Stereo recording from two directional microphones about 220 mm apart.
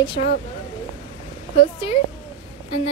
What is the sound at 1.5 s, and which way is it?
Speech, 25° left (ahead or behind).